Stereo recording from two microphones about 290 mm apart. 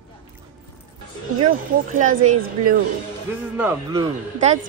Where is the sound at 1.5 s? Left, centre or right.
Right.